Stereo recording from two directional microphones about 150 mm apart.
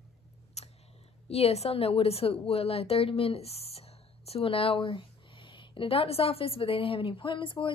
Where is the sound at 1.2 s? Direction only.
45° left (ahead or behind).